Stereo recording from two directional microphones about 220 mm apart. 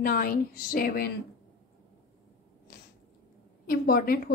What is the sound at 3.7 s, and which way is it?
Speech, 40° left (ahead or behind).